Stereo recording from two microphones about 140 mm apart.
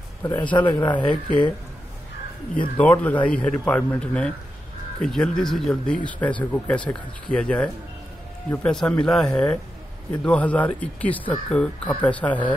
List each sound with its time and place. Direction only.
0.3 s speech: 35° left (ahead or behind)
2.8 s speech: 10° left (ahead or behind)